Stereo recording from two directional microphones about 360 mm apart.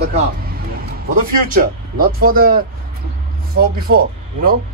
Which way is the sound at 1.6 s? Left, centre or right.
Right.